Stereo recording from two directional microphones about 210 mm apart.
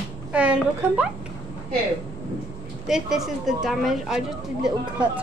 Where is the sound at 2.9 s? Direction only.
Centre (ahead or behind).